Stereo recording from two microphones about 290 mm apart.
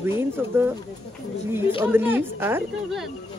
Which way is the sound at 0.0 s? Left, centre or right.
Centre.